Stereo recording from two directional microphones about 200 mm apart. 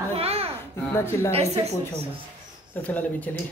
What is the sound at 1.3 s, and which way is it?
Speech, 30° right (ahead or behind).